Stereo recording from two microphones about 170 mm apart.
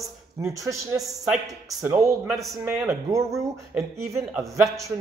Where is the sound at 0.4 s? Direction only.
20° right (ahead or behind).